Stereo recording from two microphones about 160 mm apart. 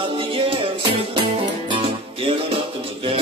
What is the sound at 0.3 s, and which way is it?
Music, 35° right (ahead or behind).